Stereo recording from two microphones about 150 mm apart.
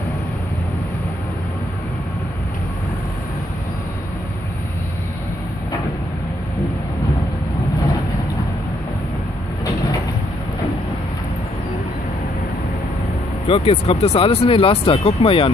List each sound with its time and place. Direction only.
13.5 s speech: 40° left (ahead or behind)